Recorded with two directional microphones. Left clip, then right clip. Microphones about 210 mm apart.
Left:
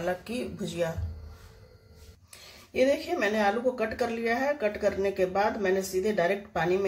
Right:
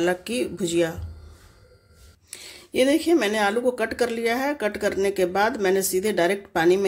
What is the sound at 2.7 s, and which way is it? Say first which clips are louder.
A woman's voice: right 6 dB; 55° right (ahead or behind).